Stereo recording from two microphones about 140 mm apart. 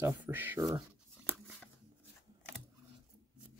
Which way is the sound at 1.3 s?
10° left (ahead or behind).